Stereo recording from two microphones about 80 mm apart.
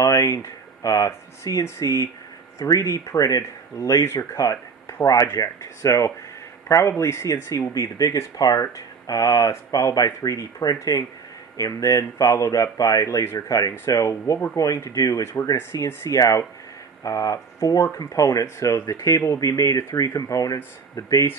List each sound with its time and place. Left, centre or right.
0.0 s speech: left
15.5 s speech: left